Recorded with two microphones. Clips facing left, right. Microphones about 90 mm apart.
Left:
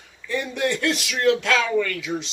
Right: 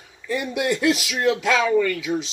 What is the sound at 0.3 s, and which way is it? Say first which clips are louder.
Speech: right 1 dB; 10° right (ahead or behind).